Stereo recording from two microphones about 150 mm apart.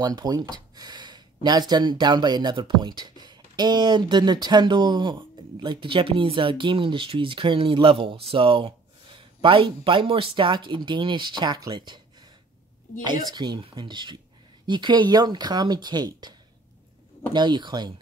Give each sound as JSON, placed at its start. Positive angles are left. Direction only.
{"t": 0.0, "sound": "speech", "side_deg": -25}